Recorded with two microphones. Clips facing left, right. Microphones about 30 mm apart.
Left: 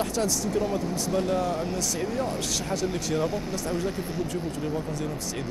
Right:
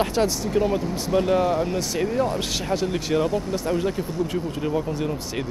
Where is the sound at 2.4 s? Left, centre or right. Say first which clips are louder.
Right 4 dB; right.